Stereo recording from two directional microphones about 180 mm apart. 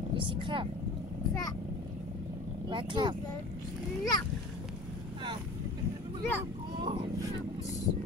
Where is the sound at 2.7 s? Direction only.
25° right (ahead or behind).